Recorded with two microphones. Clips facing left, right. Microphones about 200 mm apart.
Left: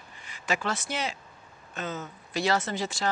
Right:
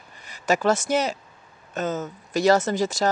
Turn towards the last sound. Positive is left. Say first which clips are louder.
# right 7 dB
turn(degrees=-40)  # may be behind; listen again after turning